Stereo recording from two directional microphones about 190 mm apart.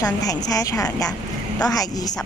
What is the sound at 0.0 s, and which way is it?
A woman's voice, 20° left (ahead or behind).